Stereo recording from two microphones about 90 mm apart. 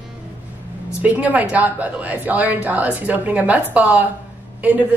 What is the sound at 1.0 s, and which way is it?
A woman's voice, 15° right (ahead or behind).